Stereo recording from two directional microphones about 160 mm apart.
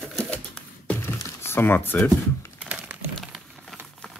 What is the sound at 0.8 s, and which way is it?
Computer keyboard, 15° left (ahead or behind).